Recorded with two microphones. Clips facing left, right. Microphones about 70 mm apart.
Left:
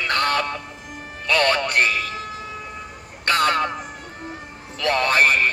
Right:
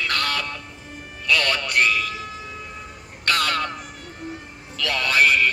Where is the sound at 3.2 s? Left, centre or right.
Left.